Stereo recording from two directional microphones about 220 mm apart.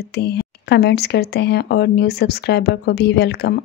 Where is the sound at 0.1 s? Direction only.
50° left (ahead or behind).